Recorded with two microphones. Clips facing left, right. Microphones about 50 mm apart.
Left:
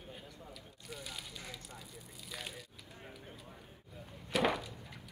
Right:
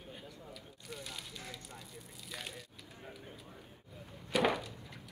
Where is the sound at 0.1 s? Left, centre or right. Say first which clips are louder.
Right 2 dB; centre.